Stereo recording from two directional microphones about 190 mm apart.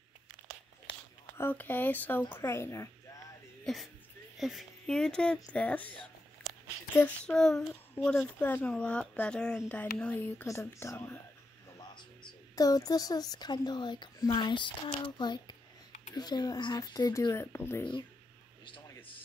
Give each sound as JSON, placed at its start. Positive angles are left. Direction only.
{"t": 1.4, "sound": "speech", "side_deg": 10}
{"t": 3.6, "sound": "speech", "side_deg": 0}